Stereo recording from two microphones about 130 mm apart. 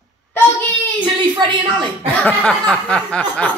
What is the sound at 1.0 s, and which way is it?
Speech, 35° right (ahead or behind).